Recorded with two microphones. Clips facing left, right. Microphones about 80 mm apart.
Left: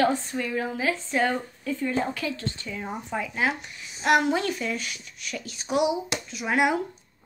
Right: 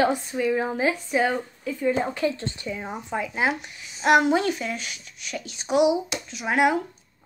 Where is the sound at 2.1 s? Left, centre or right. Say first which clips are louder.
Right 5 dB; right.